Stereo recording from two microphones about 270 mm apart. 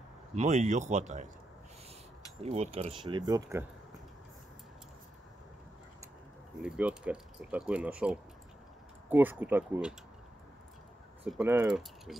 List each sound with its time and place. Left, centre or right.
0.4 s speech: right
2.4 s speech: right
6.6 s speech: centre
11.2 s speech: centre